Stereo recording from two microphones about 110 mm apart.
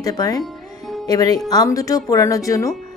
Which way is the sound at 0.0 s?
35° left (ahead or behind).